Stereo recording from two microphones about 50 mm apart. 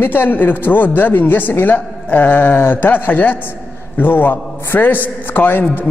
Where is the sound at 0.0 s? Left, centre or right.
Left.